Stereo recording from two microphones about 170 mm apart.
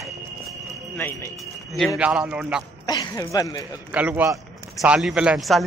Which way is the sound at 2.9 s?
20° left (ahead or behind).